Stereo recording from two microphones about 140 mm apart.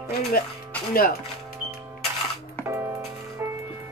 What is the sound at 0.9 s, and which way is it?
Speech, 90° left.